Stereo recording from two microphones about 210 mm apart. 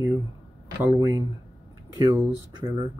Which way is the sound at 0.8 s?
15° right (ahead or behind).